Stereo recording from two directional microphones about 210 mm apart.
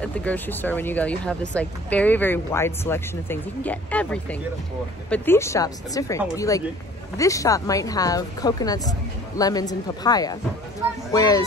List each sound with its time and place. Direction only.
0.0 s speech: 5° left (ahead or behind)